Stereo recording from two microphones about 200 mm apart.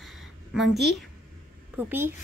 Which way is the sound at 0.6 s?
55° right (ahead or behind).